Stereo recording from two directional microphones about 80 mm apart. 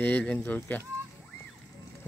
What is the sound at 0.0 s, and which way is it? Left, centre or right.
Speech, centre.